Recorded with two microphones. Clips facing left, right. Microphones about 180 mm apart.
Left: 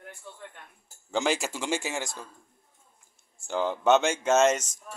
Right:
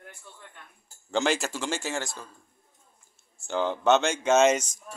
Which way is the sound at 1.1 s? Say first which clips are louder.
Right 1 dB; 10° left (ahead or behind).